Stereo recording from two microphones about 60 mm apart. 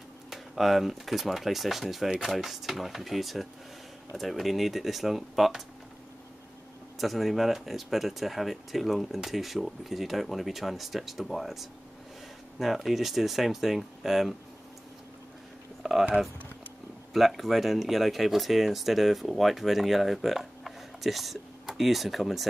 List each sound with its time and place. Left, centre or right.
0.3 s speech: centre
7.0 s speech: centre
15.8 s a sound: centre
17.1 s speech: centre